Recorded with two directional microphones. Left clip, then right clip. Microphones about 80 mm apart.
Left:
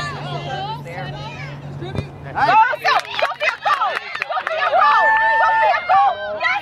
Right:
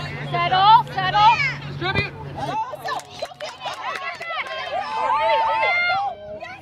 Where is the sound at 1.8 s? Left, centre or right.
Right.